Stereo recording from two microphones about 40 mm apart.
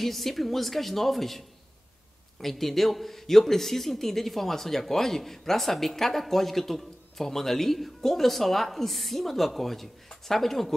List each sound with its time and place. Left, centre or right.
0.0 s a man's voice: centre
2.4 s a man's voice: centre